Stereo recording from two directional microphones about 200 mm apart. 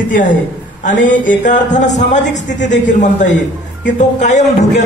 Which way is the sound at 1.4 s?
40° left (ahead or behind).